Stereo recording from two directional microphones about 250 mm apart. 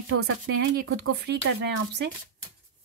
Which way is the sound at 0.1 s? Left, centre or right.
Right.